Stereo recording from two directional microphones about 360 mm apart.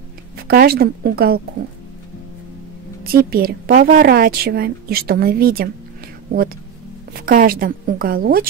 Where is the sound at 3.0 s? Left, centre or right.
Right.